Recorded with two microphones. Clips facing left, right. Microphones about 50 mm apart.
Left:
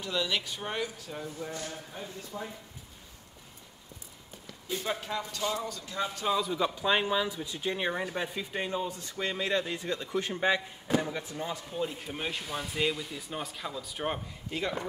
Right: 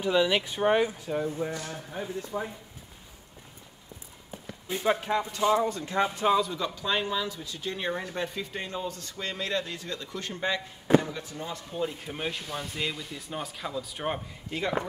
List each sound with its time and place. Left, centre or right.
0.0 s speech: right
1.2 s speech: right
4.5 s a sound: right
5.0 s speech: right
6.0 s speech: centre
6.5 s speech: centre
11.7 s speech: centre